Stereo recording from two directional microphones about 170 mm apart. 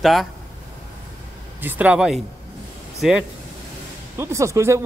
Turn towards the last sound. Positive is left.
turn(degrees=-15)  # may be behind; listen again after turning